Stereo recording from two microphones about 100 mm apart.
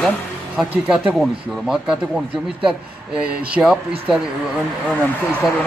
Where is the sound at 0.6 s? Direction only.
5° right (ahead or behind).